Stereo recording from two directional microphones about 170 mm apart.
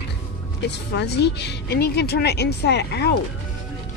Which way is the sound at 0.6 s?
85° left.